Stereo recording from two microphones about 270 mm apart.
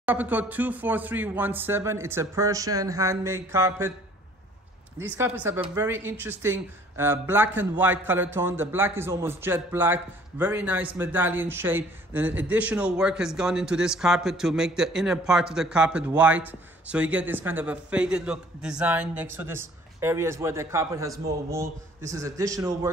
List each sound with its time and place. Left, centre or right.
0.0 s a man's voice: centre
4.9 s a man's voice: centre
22.1 s a man's voice: centre